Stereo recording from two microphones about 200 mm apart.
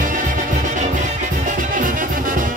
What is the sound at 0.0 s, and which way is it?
Music, 40° right (ahead or behind).